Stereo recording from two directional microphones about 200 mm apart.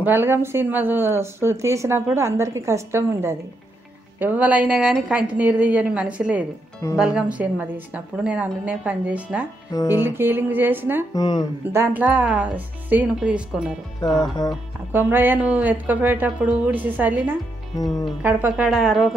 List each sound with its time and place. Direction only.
0.0 s a woman's voice: 10° right (ahead or behind)
9.7 s speech: 20° left (ahead or behind)
10.0 s speech: 10° right (ahead or behind)
11.1 s speech: 20° left (ahead or behind)
11.7 s speech: 10° right (ahead or behind)
14.0 s speech: 20° left (ahead or behind)
14.9 s a woman's voice: 10° right (ahead or behind)